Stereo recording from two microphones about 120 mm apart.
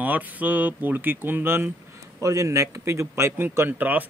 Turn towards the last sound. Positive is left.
turn(degrees=-15)  # may be behind; listen again after turning